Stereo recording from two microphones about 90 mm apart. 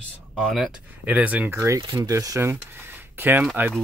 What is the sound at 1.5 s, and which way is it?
Speech, 35° right (ahead or behind).